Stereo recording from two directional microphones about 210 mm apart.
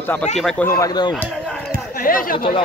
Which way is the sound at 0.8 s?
20° left (ahead or behind).